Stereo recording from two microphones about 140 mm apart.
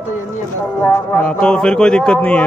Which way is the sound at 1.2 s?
10° left (ahead or behind).